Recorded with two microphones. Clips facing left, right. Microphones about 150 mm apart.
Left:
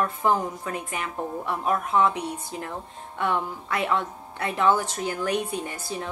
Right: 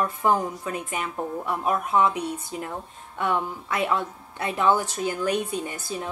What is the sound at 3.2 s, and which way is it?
Speech, 15° right (ahead or behind).